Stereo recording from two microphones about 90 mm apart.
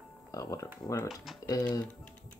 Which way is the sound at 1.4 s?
50° left (ahead or behind).